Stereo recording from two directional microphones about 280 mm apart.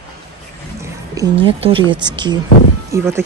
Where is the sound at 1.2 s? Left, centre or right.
Centre.